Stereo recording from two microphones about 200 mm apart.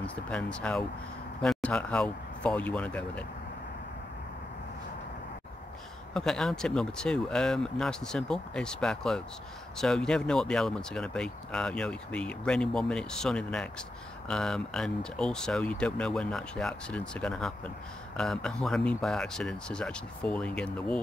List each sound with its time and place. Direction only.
0.0 s speech: 5° left (ahead or behind)
6.1 s speech: 5° left (ahead or behind)